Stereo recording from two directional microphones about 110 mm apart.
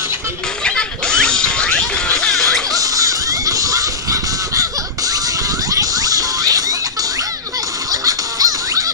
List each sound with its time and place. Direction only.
0.7 s music: 5° left (ahead or behind)
2.7 s music: 30° right (ahead or behind)
5.7 s a sound: 35° right (ahead or behind)
7.9 s music: 35° right (ahead or behind)